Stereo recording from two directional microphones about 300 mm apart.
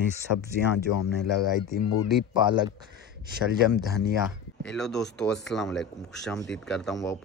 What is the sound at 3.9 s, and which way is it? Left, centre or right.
Speech, centre.